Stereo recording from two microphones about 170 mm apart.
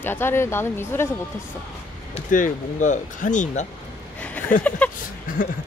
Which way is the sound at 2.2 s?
50° left (ahead or behind).